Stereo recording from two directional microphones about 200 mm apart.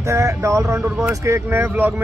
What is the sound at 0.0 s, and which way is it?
Speech, 15° right (ahead or behind).